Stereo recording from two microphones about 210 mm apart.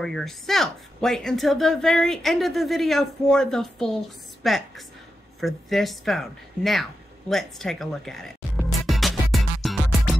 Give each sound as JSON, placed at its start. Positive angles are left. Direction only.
{"t": 0.0, "sound": "a woman's voice", "side_deg": 0}